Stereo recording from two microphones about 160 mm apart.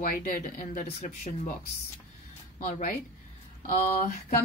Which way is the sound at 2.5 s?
60° left (ahead or behind).